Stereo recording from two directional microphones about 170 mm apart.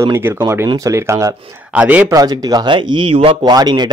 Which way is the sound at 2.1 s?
25° right (ahead or behind).